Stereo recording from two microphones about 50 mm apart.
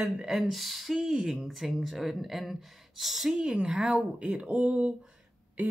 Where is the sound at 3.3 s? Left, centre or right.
Centre.